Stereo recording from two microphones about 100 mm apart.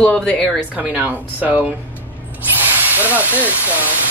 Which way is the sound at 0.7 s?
10° right (ahead or behind).